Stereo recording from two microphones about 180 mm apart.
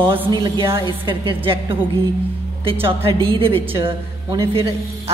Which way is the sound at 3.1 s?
30° right (ahead or behind).